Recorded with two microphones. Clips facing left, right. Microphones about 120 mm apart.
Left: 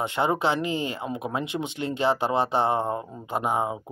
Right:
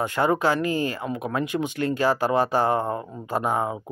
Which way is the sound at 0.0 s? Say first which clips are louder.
Right 2 dB; 20° left (ahead or behind).